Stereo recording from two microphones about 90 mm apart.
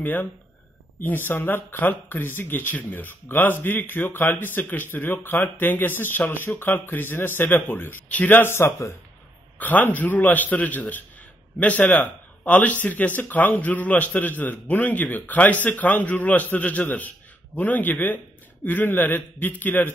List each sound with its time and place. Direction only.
0.0 s a man's voice: 20° left (ahead or behind)